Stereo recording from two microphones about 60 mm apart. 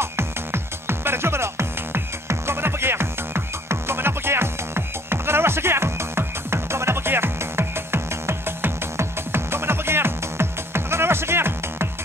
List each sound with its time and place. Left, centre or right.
0.0 s music: right